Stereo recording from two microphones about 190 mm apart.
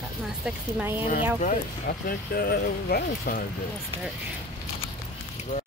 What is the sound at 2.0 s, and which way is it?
Speech, 55° left (ahead or behind).